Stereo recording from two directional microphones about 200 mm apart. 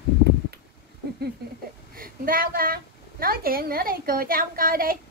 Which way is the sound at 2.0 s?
45° right (ahead or behind).